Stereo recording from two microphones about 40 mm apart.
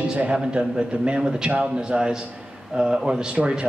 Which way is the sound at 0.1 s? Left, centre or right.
Right.